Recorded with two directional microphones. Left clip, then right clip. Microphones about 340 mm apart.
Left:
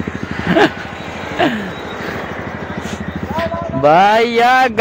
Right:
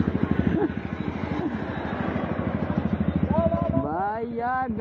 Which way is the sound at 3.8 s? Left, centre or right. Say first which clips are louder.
Left 18 dB; left.